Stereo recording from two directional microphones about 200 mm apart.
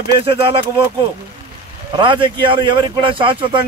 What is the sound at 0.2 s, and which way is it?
Speech, 30° right (ahead or behind).